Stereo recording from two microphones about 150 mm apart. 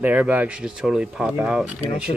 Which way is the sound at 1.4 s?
5° right (ahead or behind).